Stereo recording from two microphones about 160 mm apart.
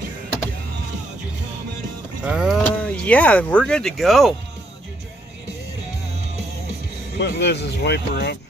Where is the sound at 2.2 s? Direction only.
5° right (ahead or behind).